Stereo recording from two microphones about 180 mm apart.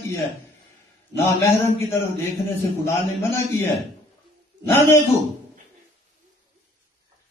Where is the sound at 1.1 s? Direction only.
15° left (ahead or behind).